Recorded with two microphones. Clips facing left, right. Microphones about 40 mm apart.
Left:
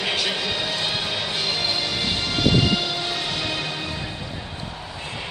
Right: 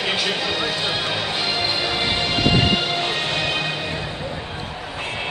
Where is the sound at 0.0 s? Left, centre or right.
Centre; by 4.0 s right.